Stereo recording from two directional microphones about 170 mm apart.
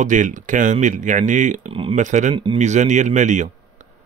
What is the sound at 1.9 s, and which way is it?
Speech, 45° right (ahead or behind).